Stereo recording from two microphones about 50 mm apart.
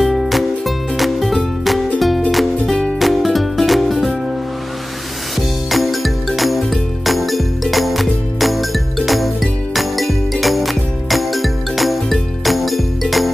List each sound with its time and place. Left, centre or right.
0.0 s music: centre
2.7 s music: centre
3.0 s music: centre
5.7 s music: centre